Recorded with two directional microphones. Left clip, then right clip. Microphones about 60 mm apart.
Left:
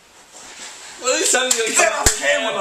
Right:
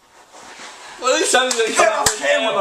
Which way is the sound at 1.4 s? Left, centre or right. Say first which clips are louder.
Right 2 dB; centre.